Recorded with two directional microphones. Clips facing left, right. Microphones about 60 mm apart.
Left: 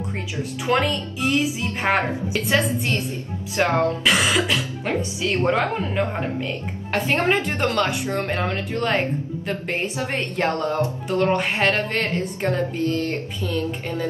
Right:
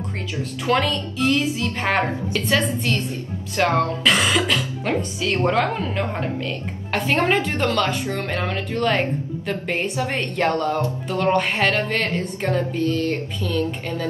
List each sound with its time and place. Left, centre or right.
0.7 s speech: centre
4.8 s speech: left
8.5 s speech: centre